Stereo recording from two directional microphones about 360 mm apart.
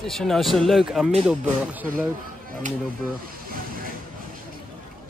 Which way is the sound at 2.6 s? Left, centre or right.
Centre.